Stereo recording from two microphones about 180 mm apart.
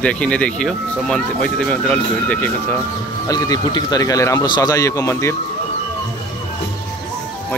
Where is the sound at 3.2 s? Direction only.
20° left (ahead or behind).